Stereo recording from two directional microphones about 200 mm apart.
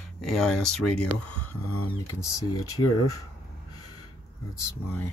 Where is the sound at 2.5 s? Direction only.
90° left.